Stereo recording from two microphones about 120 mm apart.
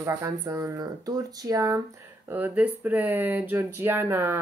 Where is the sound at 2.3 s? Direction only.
15° right (ahead or behind).